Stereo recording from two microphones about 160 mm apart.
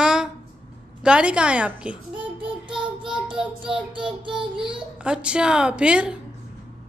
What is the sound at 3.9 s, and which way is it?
Child singing, 30° right (ahead or behind).